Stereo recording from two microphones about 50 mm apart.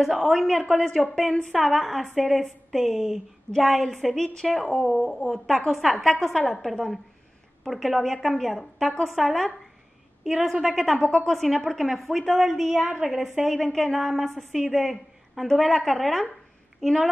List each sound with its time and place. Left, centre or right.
0.0 s a woman's voice: centre
3.5 s a woman's voice: centre
11.0 s speech: centre
11.2 s a woman's voice: centre